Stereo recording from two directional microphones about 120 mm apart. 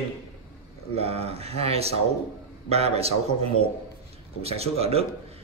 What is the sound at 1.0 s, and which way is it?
Mantra, 60° right (ahead or behind).